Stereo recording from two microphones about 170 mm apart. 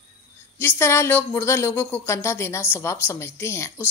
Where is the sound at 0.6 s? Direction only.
15° left (ahead or behind).